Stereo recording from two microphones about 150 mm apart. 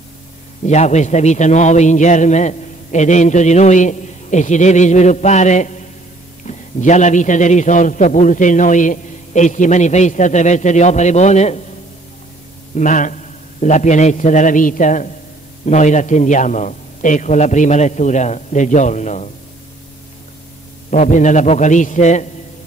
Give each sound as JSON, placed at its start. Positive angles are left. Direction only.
{"t": 0.7, "sound": "a man's voice", "side_deg": 50}
{"t": 12.7, "sound": "a man's voice", "side_deg": 60}
{"t": 20.9, "sound": "a man's voice", "side_deg": 55}